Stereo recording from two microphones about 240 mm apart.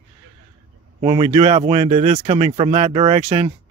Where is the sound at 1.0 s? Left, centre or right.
Right.